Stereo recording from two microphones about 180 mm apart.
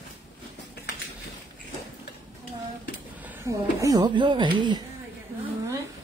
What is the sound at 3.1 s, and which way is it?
A woman's voice, 10° right (ahead or behind).